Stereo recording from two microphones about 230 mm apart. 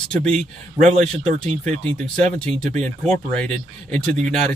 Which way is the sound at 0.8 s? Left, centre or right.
Right.